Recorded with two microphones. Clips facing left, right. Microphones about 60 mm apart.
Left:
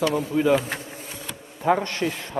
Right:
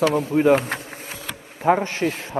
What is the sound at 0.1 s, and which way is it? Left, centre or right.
Bee, right.